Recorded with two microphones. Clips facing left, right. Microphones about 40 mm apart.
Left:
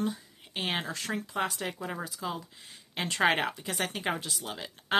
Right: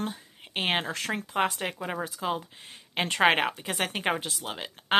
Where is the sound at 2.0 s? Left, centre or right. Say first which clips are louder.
Right 5 dB; right.